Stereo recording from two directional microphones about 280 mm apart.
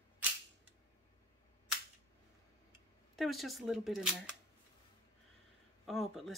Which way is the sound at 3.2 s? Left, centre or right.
Centre.